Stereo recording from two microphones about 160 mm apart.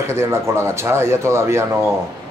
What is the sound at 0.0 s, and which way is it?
Speech, 15° right (ahead or behind).